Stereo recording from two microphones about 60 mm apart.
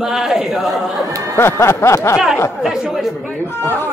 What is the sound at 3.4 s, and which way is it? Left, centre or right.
Speech, left.